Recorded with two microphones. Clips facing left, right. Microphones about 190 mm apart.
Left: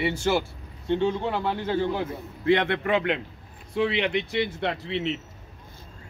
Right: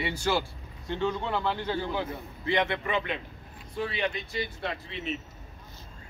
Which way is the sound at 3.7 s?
75° left (ahead or behind).